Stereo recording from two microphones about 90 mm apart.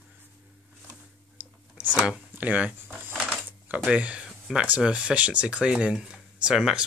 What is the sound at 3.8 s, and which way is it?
Speech, 15° right (ahead or behind).